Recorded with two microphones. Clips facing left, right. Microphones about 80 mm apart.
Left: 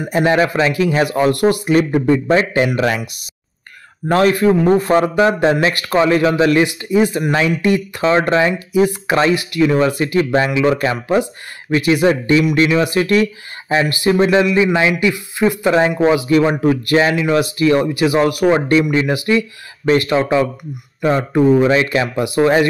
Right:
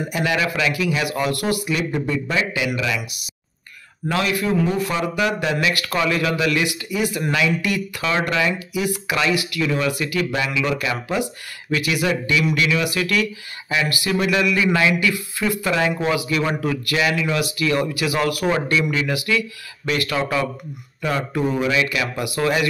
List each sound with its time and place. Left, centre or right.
0.1 s a man's voice: left
4.1 s a man's voice: left